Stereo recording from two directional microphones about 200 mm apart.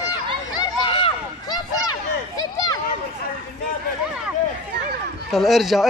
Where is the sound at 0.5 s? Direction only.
20° left (ahead or behind).